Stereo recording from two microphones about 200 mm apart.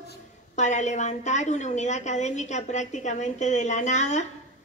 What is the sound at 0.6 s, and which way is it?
A man's voice, 35° left (ahead or behind).